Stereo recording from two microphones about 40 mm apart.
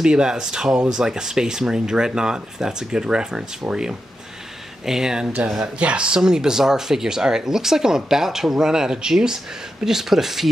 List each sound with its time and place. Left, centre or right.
0.0 s speech: centre
4.8 s speech: centre
5.6 s speech: right; by 10.5 s centre